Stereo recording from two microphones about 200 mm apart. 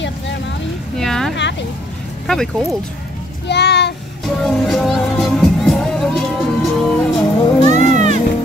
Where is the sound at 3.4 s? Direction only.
60° left (ahead or behind).